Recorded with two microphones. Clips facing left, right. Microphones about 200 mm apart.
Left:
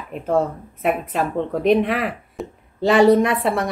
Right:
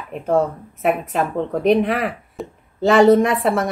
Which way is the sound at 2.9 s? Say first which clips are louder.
Right 1 dB; 45° right (ahead or behind).